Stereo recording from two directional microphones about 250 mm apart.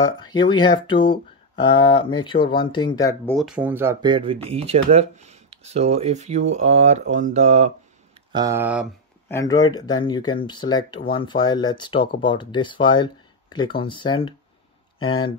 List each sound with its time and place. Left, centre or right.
0.0 s speech: centre
3.3 s speech: centre; by 7.7 s right
8.3 s speech: centre
9.3 s speech: centre